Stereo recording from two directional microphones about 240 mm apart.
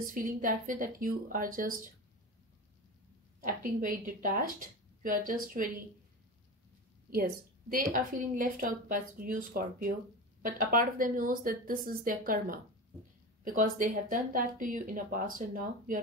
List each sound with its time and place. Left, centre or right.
0.0 s speech: right
3.3 s speech: right
7.2 s speech: right